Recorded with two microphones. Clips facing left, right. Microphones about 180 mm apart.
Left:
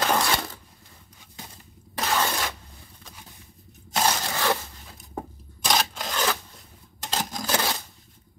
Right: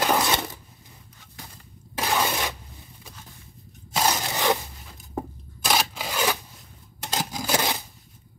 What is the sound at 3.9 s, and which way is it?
Crushing, 15° right (ahead or behind).